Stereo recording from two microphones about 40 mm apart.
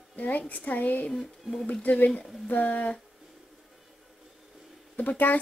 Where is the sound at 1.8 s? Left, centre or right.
Left.